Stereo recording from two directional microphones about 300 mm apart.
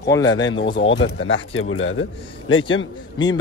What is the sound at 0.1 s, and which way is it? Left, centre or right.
Speech, centre.